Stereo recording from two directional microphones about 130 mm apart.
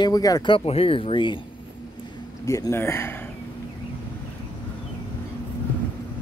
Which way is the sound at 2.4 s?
25° left (ahead or behind).